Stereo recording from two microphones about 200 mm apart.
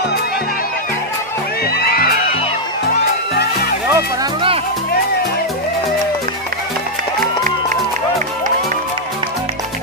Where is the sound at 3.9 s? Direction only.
20° right (ahead or behind).